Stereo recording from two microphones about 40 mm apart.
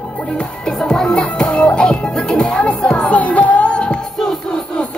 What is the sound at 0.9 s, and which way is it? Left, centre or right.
Music, centre.